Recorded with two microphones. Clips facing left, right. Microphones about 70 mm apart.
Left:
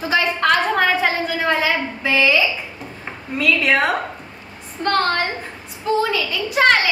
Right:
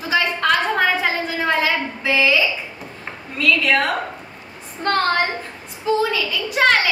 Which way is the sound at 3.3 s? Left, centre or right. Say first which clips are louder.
Left 1 dB; centre.